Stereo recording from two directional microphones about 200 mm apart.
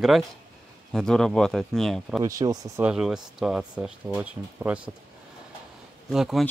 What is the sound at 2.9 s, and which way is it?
Speech, 5° right (ahead or behind).